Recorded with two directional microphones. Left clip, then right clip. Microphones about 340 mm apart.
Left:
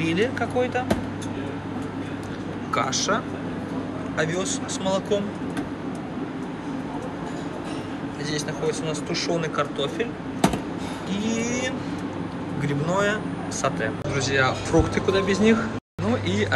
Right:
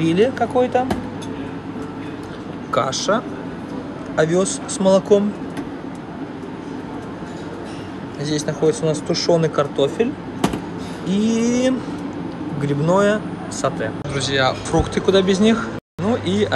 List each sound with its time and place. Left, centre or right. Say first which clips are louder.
0.0 s speech: right 7 dB; centre
2.7 s speech: right 5 dB; centre
4.2 s speech: right 8 dB; centre
8.3 s speech: right 8 dB; centre
11.1 s speech: right 8 dB; centre